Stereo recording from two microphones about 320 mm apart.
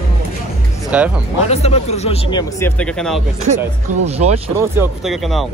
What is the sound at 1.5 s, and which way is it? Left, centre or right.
Speech, centre.